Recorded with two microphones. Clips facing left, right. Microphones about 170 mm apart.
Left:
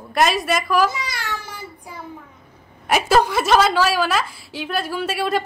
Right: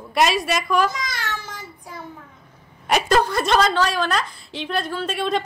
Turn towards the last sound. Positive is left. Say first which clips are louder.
# left 1 dB
turn(degrees=5)  # may be behind; listen again after turning